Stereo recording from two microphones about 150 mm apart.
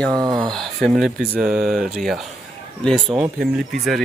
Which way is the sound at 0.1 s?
30° right (ahead or behind).